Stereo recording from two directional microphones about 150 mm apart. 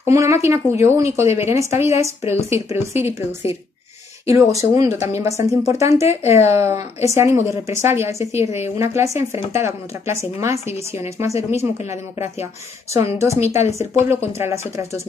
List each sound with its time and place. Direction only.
0.0 s speech: 20° right (ahead or behind)
3.4 s speech: 40° left (ahead or behind)
4.3 s speech: 20° right (ahead or behind)
8.2 s a woman's voice: 45° left (ahead or behind)
8.5 s speech: 15° right (ahead or behind)